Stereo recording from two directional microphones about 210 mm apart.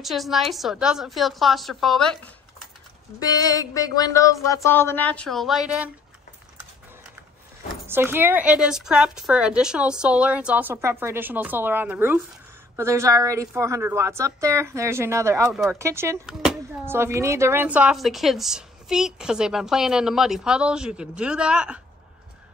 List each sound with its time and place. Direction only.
0.0 s speech: centre (ahead or behind)
3.2 s music: 20° left (ahead or behind)
4.6 s speech: 10° left (ahead or behind)
7.6 s speech: 10° right (ahead or behind)
15.5 s speech: centre (ahead or behind)
15.8 s speech: 10° right (ahead or behind)